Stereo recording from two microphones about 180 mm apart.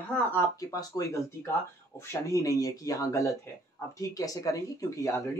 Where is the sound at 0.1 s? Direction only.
10° left (ahead or behind).